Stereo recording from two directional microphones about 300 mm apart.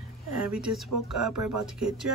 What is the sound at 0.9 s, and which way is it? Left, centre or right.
Speech, right.